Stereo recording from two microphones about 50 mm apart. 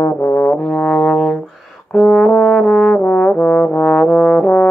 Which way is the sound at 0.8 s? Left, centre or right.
Centre.